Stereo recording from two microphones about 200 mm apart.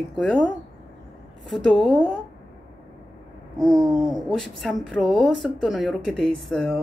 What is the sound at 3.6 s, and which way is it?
A woman's voice, centre (ahead or behind).